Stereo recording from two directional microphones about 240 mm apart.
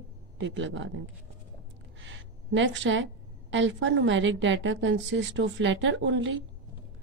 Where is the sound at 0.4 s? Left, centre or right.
Right.